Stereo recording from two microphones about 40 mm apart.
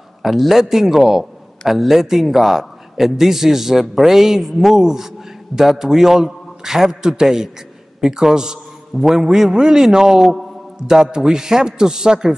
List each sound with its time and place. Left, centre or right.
0.2 s a man's voice: centre